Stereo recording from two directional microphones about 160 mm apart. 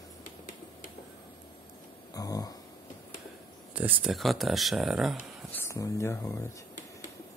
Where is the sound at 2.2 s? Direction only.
20° left (ahead or behind).